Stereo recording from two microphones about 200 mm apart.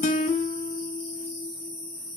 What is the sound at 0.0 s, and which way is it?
Music, 40° left (ahead or behind).